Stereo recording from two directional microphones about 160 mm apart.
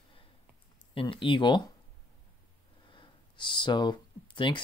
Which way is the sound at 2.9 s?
30° left (ahead or behind).